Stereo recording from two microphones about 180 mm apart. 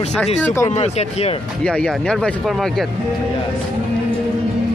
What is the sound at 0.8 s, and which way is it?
Speech, 35° left (ahead or behind).